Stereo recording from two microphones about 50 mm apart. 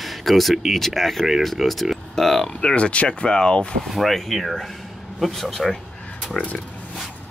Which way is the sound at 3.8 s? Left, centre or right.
Centre.